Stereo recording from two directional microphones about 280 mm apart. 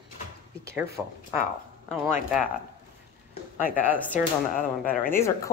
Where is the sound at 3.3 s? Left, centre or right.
Left.